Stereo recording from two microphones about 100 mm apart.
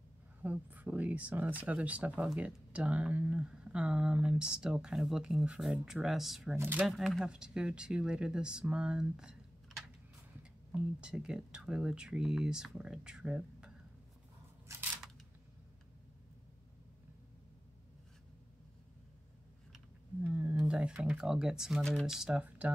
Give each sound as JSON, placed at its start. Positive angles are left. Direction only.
{"t": 0.4, "sound": "speech", "side_deg": -15}
{"t": 6.5, "sound": "speech", "side_deg": -20}
{"t": 6.9, "sound": "speech", "side_deg": 0}
{"t": 20.2, "sound": "a sound", "side_deg": -20}
{"t": 20.5, "sound": "speech", "side_deg": -5}